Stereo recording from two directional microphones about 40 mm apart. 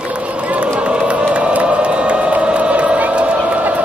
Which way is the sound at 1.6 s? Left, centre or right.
Right.